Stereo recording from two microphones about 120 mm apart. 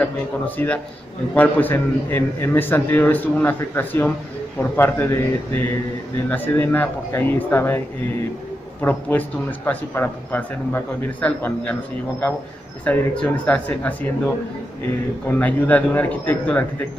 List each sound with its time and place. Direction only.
0.6 s a man's voice: 20° left (ahead or behind)
8.8 s a man's voice: 15° left (ahead or behind)
12.8 s a man's voice: 10° left (ahead or behind)